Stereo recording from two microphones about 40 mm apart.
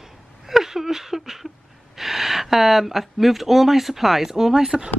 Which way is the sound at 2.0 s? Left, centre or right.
Centre.